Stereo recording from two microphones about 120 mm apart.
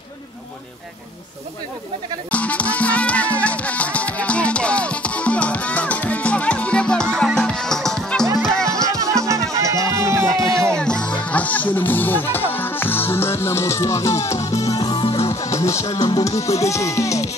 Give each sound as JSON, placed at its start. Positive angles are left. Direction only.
{"t": 2.3, "sound": "music", "side_deg": 10}
{"t": 8.8, "sound": "music", "side_deg": -30}
{"t": 10.7, "sound": "music", "side_deg": 5}
{"t": 15.4, "sound": "music", "side_deg": 25}
{"t": 15.9, "sound": "speech", "side_deg": 35}